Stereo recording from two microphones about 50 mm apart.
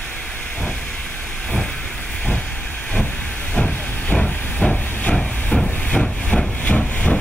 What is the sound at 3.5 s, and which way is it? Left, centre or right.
Steam, left.